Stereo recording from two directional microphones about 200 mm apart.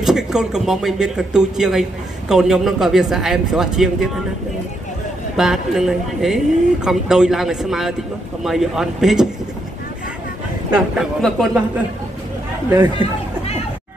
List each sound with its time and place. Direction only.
0.0 s speech: 5° right (ahead or behind)
5.4 s speech: centre (ahead or behind)
11.0 s speech: centre (ahead or behind)
12.6 s speech: 15° right (ahead or behind)